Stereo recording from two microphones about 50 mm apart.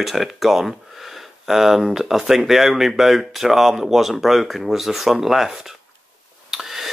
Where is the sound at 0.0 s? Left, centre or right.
Centre.